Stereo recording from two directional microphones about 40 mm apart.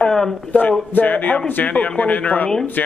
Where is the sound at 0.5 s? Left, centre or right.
Left.